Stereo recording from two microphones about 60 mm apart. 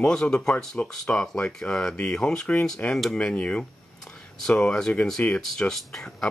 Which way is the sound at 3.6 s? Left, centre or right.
Centre.